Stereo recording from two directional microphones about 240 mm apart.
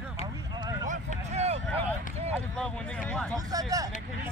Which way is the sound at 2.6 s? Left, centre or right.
Centre.